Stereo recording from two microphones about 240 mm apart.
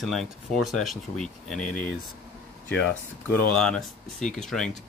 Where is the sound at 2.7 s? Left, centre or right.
Centre.